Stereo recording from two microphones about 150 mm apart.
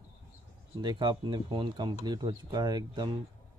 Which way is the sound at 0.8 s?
30° right (ahead or behind).